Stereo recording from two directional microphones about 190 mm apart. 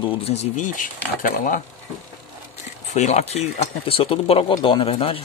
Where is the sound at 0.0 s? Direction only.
35° left (ahead or behind).